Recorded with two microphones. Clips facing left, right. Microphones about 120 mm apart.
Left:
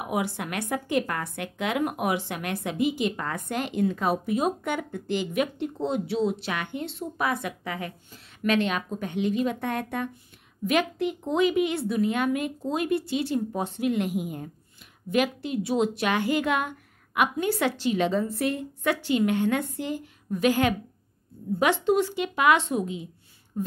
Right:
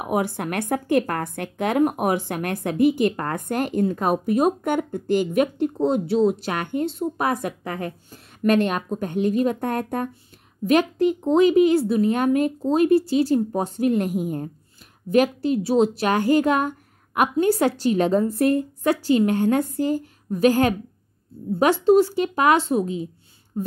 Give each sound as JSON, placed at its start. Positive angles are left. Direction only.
{"t": 0.0, "sound": "a woman's voice", "side_deg": -45}
{"t": 23.5, "sound": "speech", "side_deg": -25}